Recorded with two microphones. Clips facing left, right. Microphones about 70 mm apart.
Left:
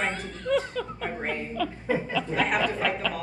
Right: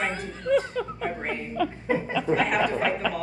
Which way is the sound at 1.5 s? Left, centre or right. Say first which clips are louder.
Right 3 dB; centre.